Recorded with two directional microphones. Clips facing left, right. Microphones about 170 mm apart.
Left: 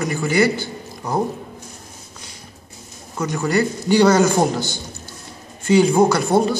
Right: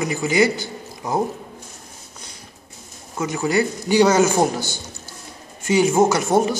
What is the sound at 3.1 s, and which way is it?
Speech, 5° right (ahead or behind).